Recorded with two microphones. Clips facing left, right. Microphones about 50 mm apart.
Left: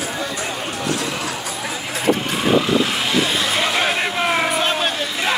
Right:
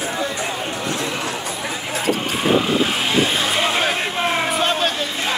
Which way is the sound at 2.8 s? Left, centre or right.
Right.